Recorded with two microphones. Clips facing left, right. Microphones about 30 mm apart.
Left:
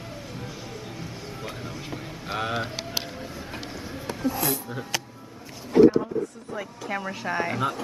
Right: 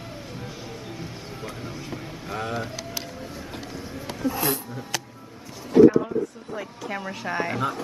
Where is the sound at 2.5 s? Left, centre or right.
Left.